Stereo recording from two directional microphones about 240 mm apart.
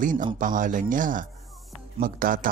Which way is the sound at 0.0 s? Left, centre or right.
Right.